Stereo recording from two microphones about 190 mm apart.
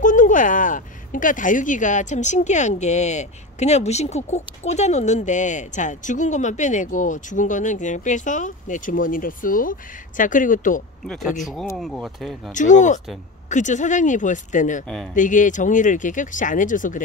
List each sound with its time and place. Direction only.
0.0 s speech: 45° left (ahead or behind)
11.1 s speech: centre (ahead or behind)
12.5 s speech: 40° left (ahead or behind)